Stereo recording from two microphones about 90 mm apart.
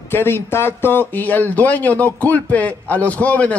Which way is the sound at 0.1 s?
25° left (ahead or behind).